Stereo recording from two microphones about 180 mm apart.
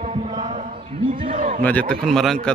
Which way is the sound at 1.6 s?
10° left (ahead or behind).